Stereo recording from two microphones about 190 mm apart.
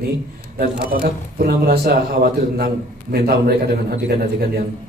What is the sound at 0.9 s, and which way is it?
A man's voice, 50° right (ahead or behind).